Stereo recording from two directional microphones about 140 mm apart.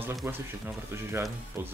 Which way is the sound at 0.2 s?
15° right (ahead or behind).